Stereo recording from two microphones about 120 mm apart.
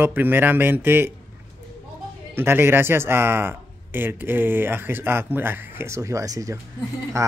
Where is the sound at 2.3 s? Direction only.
20° right (ahead or behind).